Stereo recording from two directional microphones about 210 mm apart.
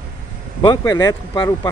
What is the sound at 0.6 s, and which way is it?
Speech, 15° left (ahead or behind).